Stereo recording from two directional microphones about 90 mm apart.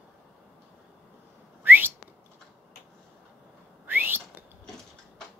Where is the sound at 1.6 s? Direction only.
20° right (ahead or behind).